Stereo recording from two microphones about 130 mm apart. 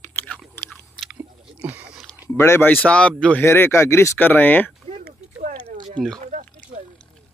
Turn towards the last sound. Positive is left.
turn(degrees=-70)  # may be behind; listen again after turning